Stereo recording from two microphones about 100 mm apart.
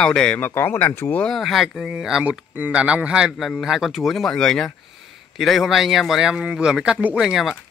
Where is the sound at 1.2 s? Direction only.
Centre (ahead or behind).